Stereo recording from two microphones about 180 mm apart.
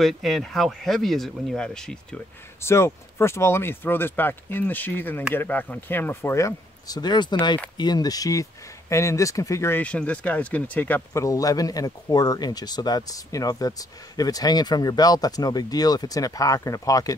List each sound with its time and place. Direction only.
0.0 s speech: centre (ahead or behind); by 17.1 s 20° left (ahead or behind)